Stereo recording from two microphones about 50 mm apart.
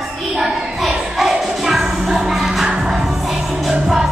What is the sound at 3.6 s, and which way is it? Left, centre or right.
Music, centre.